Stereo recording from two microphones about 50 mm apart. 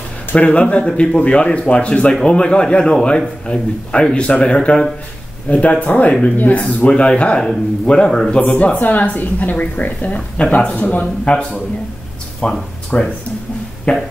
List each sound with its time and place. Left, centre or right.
0.4 s a man's voice: left
6.8 s a man's voice: centre
8.4 s a woman's voice: left
10.1 s a man's voice: left